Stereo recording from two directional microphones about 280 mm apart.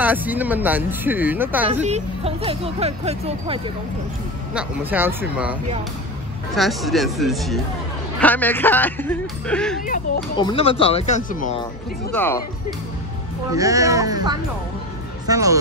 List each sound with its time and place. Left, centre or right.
0.0 s speech: centre
1.9 s speech: right
4.6 s speech: centre
10.3 s speech: centre
12.1 s speech: centre
13.5 s speech: centre